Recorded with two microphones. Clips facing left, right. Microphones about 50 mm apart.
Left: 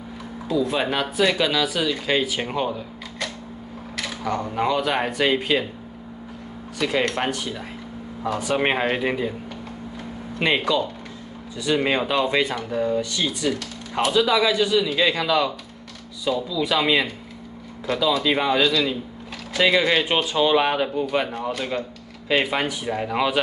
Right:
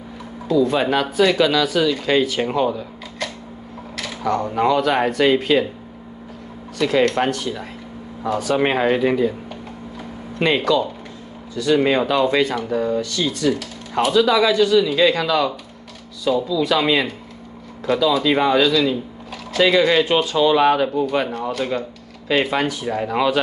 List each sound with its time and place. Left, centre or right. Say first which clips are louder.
0.5 s speech: right 5 dB; centre
3.9 s a sound: right 4 dB; centre
4.5 s speech: right 4 dB; centre
6.8 s speech: right 5 dB; centre
8.5 s speech: right 4 dB; centre
10.4 s speech: right 4 dB; centre
12.5 s speech: right 3 dB; centre
13.0 s speech: right 3 dB; centre
13.5 s speech: right 5 dB; centre